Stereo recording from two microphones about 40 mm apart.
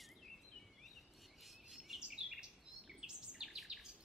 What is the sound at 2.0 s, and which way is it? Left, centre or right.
Bird, centre.